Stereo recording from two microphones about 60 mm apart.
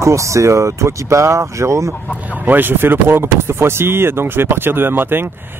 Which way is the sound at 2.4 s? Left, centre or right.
Right.